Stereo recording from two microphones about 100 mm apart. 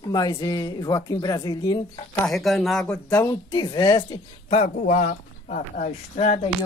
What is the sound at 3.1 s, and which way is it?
Speech, 30° left (ahead or behind).